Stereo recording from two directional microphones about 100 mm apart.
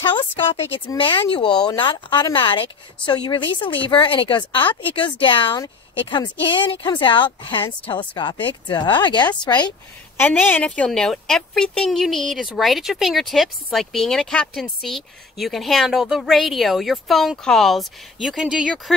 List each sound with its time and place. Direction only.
0.0 s a woman's voice: 60° left (ahead or behind)
10.1 s a woman's voice: 20° left (ahead or behind); by 18.9 s 5° right (ahead or behind)